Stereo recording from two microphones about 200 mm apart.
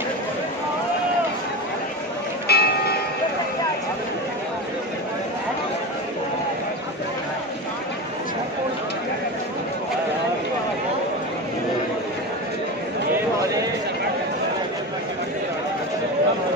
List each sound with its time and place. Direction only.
2.4 s music: 55° left (ahead or behind)